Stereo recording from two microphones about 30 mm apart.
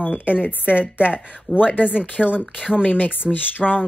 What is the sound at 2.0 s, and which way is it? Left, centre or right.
Speech, left.